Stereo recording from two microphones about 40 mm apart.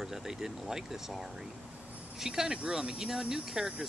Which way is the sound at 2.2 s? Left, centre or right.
Centre.